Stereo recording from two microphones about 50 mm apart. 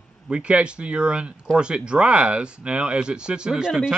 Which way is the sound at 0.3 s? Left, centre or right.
Right.